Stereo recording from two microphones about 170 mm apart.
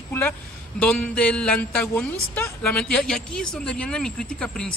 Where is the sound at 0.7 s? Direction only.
5° left (ahead or behind).